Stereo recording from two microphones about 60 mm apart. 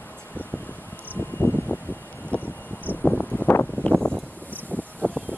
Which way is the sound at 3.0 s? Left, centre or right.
Left.